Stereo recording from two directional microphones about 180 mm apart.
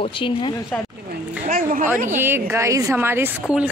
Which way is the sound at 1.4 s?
45° right (ahead or behind).